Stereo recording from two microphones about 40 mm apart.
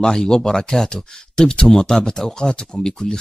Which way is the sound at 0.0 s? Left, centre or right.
Centre.